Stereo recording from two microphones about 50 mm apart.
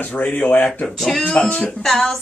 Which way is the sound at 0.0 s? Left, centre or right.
Left.